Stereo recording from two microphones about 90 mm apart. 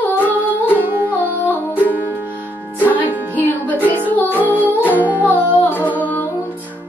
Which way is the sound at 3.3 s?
20° left (ahead or behind).